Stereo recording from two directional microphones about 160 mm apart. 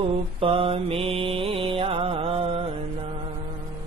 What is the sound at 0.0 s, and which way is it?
Mantra, 35° right (ahead or behind).